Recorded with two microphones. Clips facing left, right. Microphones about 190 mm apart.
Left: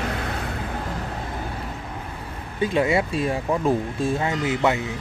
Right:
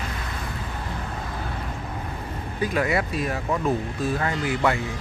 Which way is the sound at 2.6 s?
25° left (ahead or behind).